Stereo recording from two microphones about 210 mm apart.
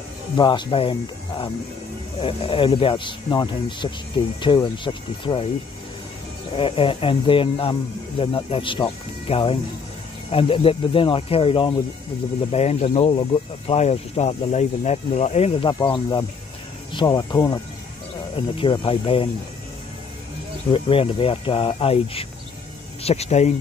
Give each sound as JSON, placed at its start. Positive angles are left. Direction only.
{"t": 0.4, "sound": "speech", "side_deg": 20}
{"t": 2.1, "sound": "speech", "side_deg": 25}
{"t": 6.5, "sound": "speech", "side_deg": 25}
{"t": 20.7, "sound": "speech", "side_deg": 25}